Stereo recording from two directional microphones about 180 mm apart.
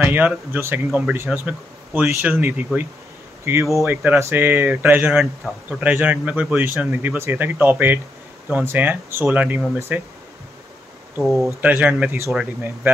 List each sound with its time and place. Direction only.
0.1 s speech: 10° right (ahead or behind)
11.6 s speech: 10° right (ahead or behind)